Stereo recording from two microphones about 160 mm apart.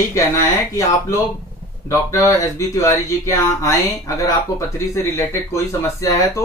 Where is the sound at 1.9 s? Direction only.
20° left (ahead or behind).